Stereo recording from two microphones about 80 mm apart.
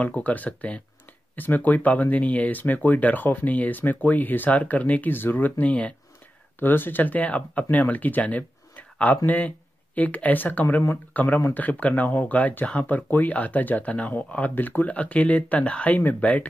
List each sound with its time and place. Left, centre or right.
0.0 s speech: centre